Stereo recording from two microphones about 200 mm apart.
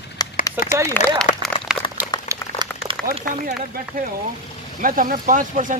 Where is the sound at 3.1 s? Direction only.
35° right (ahead or behind).